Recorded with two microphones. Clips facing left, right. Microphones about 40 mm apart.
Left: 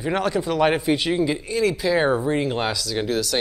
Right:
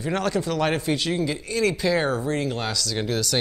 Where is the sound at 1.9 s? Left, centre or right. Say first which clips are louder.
Left 4 dB; centre.